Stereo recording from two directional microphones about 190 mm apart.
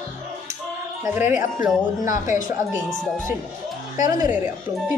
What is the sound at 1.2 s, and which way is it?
Speech, 15° right (ahead or behind).